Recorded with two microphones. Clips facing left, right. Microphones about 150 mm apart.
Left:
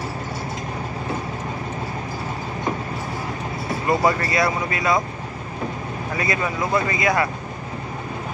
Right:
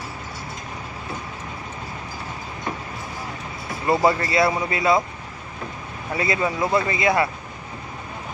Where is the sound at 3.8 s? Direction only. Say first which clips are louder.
Right 1 dB; 25° right (ahead or behind).